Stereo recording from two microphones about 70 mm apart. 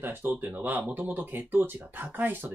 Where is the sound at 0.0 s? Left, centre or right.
Right.